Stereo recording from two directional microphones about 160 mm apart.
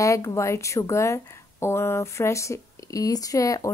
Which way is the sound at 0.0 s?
20° left (ahead or behind).